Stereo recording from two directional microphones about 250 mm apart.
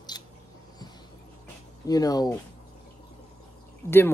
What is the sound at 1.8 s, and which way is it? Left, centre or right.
Speech, centre.